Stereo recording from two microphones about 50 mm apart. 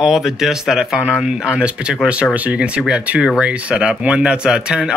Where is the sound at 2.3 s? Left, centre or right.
Right.